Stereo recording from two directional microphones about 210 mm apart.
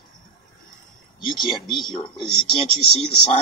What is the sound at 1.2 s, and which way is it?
Speech, 25° left (ahead or behind).